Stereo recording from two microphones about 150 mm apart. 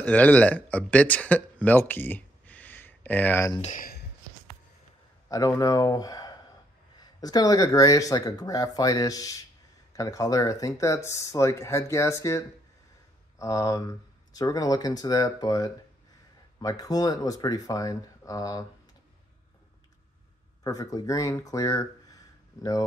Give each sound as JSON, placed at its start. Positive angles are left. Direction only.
{"t": 0.0, "sound": "speech", "side_deg": 10}
{"t": 5.3, "sound": "speech", "side_deg": 25}
{"t": 20.6, "sound": "speech", "side_deg": 25}